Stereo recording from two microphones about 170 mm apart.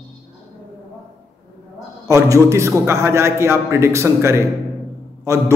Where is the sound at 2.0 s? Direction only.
20° right (ahead or behind).